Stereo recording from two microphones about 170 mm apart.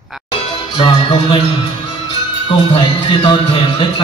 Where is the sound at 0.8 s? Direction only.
30° left (ahead or behind).